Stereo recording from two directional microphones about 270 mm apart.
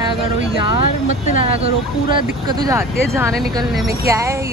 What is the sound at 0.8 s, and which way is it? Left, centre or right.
Speech, left.